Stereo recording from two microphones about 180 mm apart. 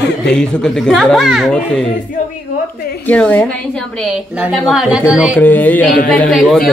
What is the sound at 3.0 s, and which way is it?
A woman's voice, 10° left (ahead or behind).